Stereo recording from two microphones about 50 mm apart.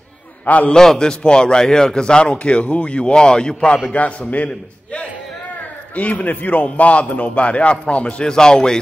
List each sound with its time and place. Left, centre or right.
0.5 s a man's voice: left
0.7 s a man's voice: centre
3.9 s a man's voice: left; by 8.7 s centre